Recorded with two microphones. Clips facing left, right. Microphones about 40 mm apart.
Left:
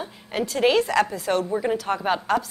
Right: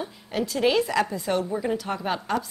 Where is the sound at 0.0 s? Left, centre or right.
Centre.